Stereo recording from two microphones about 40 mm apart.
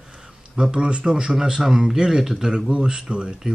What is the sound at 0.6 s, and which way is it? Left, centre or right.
Speech, right.